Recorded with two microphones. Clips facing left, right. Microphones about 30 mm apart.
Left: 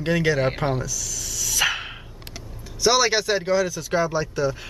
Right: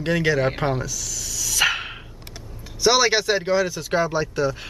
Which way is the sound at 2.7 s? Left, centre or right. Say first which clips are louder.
Right 1 dB; centre.